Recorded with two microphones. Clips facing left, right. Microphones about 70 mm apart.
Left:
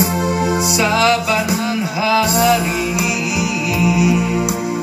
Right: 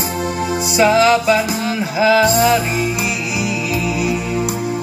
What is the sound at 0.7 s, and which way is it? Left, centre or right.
Music, right.